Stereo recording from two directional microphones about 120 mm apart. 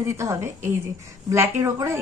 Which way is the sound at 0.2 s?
25° right (ahead or behind).